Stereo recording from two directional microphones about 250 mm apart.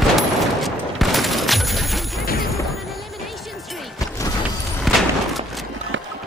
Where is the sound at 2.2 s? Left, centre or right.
Left.